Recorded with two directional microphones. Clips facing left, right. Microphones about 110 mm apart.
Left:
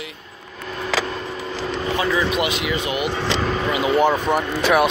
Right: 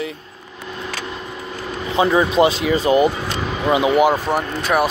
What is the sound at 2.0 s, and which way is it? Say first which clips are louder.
Speech: right 8 dB; 30° right (ahead or behind).